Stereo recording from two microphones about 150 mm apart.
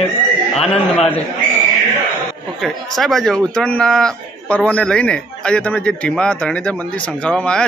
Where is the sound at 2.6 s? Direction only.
Centre (ahead or behind).